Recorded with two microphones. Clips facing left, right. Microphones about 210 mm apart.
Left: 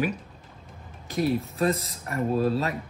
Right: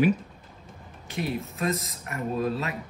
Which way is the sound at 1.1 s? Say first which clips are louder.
Left 5 dB; 35° left (ahead or behind).